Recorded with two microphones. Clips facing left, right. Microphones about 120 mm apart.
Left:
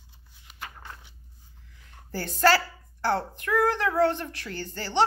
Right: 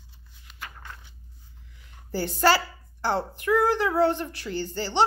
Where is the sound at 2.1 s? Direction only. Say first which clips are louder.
Even; 15° right (ahead or behind).